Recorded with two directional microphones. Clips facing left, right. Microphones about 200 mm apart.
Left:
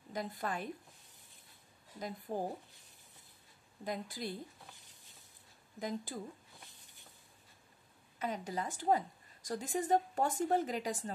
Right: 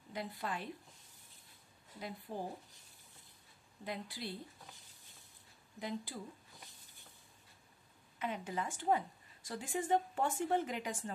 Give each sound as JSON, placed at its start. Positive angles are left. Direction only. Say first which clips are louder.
{"t": 0.1, "sound": "a woman's voice", "louder": "left 3 dB", "side_deg": 45}
{"t": 2.0, "sound": "a woman's voice", "louder": "left 4 dB", "side_deg": 45}
{"t": 3.8, "sound": "a woman's voice", "louder": "left 3 dB", "side_deg": 45}
{"t": 5.8, "sound": "a woman's voice", "louder": "left 2 dB", "side_deg": 45}
{"t": 8.2, "sound": "a woman's voice", "louder": "left 1 dB", "side_deg": 40}